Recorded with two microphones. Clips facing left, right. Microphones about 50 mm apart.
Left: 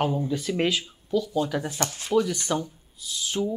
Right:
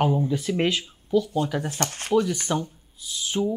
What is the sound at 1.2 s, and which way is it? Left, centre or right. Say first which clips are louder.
Speech: right 1 dB; right.